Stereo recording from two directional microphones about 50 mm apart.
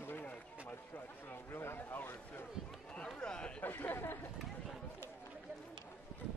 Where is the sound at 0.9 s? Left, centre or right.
Left.